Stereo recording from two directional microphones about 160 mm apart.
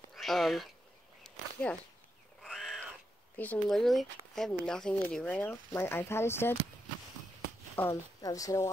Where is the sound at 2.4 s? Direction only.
Centre (ahead or behind).